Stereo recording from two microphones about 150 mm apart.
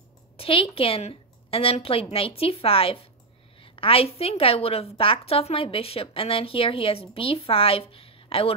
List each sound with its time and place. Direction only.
0.4 s a woman's voice: 40° left (ahead or behind)